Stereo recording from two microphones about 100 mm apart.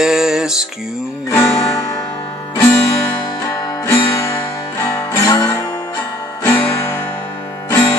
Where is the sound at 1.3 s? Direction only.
30° left (ahead or behind).